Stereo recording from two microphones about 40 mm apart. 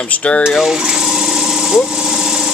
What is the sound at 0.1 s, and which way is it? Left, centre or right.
Speech, left.